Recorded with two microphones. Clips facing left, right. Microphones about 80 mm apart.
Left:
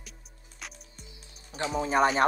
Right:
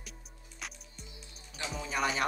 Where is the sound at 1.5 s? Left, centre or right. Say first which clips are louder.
Left 10 dB; left.